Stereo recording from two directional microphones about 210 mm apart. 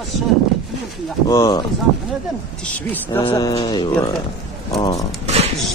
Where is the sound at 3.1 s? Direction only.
20° left (ahead or behind).